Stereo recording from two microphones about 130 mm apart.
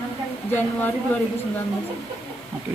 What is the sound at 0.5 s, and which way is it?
Speech, 15° left (ahead or behind).